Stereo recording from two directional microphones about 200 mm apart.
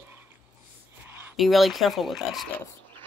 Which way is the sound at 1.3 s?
Centre (ahead or behind).